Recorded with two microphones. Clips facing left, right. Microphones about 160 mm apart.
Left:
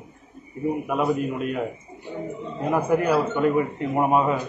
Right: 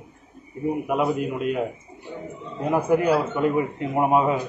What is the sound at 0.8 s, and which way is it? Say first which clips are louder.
Speech: even; 15° right (ahead or behind).